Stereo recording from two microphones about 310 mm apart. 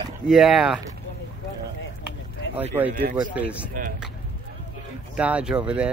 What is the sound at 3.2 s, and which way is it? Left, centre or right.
Speech, centre.